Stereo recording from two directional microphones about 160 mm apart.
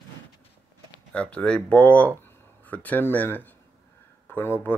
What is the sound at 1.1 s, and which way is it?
Speech, 5° left (ahead or behind).